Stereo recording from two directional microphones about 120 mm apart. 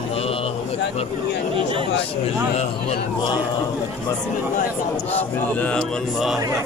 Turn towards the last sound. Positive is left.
turn(degrees=0)  # may be behind; listen again after turning